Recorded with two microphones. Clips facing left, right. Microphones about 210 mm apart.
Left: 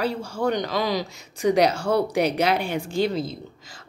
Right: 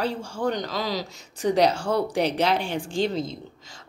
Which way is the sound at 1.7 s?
40° left (ahead or behind).